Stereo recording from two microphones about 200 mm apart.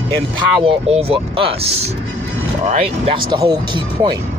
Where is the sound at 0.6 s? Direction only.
25° right (ahead or behind).